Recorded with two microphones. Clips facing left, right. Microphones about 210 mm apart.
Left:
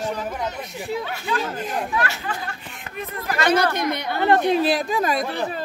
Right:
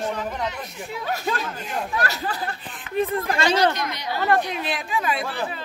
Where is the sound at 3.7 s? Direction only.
55° left (ahead or behind).